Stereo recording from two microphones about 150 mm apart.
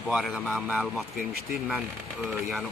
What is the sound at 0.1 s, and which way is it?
Speech, 5° right (ahead or behind).